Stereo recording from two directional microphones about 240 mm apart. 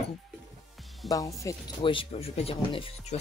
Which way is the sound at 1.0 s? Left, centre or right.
Centre.